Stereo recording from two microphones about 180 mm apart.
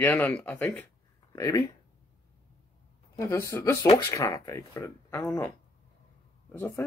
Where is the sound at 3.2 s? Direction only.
15° left (ahead or behind).